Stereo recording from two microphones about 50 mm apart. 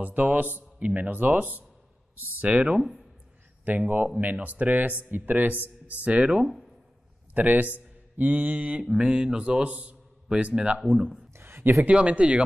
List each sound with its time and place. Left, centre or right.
0.0 s speech: right
2.8 s speech: centre
3.8 s speech: right
6.4 s speech: centre
7.3 s speech: right; by 11.2 s centre
11.3 s a sound: right
11.9 s speech: right